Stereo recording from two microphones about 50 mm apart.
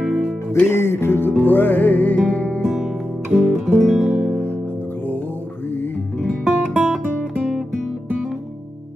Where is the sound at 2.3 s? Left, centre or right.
Left.